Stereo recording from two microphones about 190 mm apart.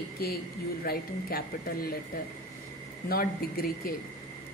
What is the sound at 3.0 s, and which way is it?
Speech, 50° left (ahead or behind).